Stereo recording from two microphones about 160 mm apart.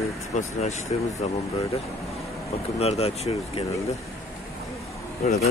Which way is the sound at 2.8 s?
40° left (ahead or behind).